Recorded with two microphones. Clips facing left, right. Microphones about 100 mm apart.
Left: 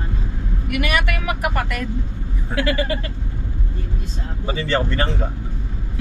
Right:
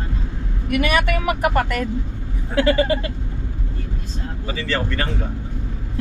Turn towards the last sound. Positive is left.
turn(degrees=30)  # may be behind; listen again after turning